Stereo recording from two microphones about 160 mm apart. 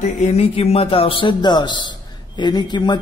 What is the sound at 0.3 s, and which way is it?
A man's voice, 40° left (ahead or behind).